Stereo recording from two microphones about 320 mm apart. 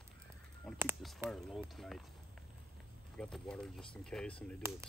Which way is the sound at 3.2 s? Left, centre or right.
Centre.